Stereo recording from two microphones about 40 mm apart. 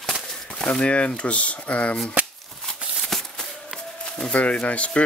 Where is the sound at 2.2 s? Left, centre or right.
Right.